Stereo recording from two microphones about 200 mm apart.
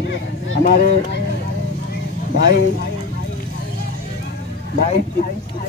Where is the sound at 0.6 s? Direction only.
50° left (ahead or behind).